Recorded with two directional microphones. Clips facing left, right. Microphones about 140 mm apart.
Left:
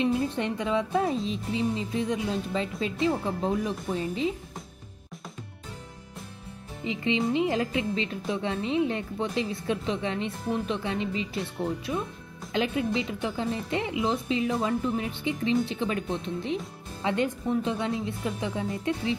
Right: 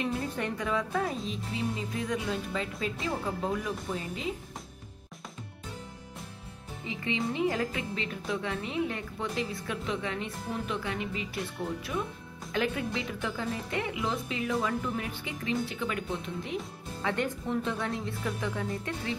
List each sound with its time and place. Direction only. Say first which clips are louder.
0.0 s speech: left 6 dB; 25° left (ahead or behind)
6.8 s speech: left 6 dB; 20° left (ahead or behind)